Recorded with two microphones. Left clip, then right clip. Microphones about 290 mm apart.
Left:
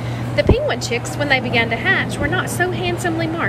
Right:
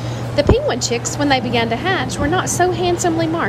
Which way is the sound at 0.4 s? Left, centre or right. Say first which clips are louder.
Right 2 dB; centre.